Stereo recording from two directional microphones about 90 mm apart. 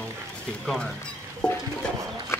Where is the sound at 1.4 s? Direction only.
10° left (ahead or behind).